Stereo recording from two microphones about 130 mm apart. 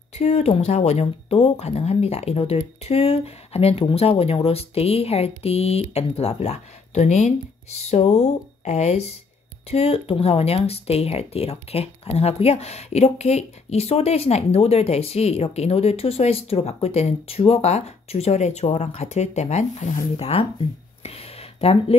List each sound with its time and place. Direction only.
0.1 s speech: 55° left (ahead or behind)
20.2 s speech: 50° left (ahead or behind)
21.0 s a sound: 50° left (ahead or behind)